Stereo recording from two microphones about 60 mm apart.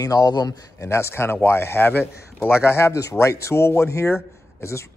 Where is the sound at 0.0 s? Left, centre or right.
Left.